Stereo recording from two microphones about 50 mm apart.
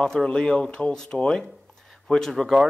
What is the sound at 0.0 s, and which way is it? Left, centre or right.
Speech, centre.